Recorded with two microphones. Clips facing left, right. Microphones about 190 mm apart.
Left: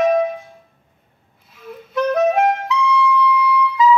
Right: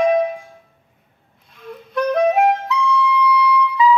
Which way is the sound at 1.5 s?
5° left (ahead or behind).